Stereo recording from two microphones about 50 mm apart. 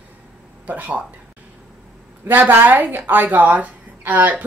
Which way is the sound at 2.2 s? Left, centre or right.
Right.